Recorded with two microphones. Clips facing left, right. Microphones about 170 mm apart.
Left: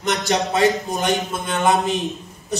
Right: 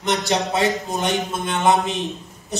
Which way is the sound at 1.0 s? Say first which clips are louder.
Left 1 dB; 25° right (ahead or behind).